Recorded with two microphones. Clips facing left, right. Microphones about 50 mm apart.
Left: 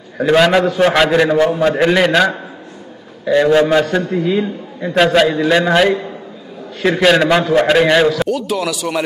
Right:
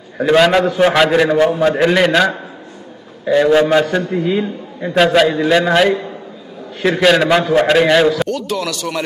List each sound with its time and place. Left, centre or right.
0.2 s a man's voice: centre
3.5 s a man's voice: centre